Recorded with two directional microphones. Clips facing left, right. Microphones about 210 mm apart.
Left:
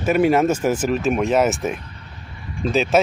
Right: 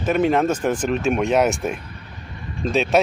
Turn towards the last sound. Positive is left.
turn(degrees=0)  # may be behind; listen again after turning